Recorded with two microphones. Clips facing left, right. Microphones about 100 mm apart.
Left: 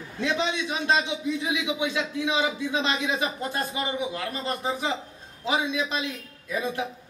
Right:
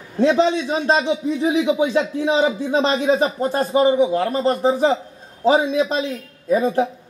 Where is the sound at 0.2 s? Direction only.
35° right (ahead or behind).